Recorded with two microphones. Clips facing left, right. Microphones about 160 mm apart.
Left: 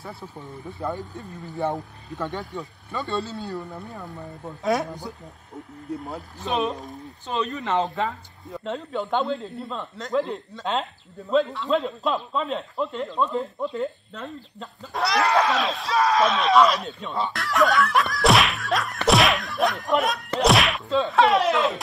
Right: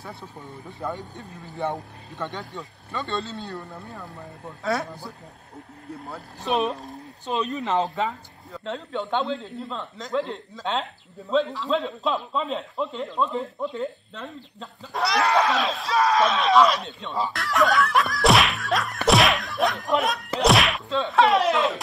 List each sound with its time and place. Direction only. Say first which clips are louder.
0.7 s a man's voice: left 2 dB; centre (ahead or behind)
4.6 s a man's voice: left 3 dB; 20° left (ahead or behind)
7.4 s a man's voice: left 1 dB; centre (ahead or behind)